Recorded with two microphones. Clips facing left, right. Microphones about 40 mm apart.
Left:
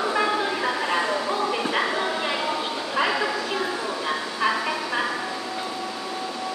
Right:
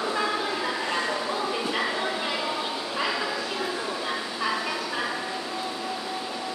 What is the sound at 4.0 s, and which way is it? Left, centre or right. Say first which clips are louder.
Fowl: left 4 dB; centre.